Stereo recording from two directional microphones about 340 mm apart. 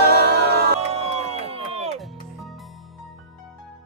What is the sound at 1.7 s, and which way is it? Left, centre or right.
Music, centre.